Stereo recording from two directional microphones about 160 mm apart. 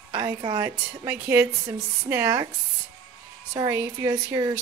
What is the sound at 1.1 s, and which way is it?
A woman's voice, 15° right (ahead or behind).